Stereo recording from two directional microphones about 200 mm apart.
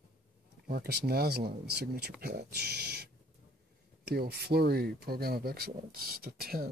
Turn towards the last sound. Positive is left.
turn(degrees=-50)  # may be behind; listen again after turning